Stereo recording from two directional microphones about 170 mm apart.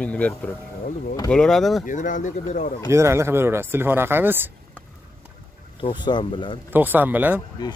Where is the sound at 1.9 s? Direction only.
50° left (ahead or behind).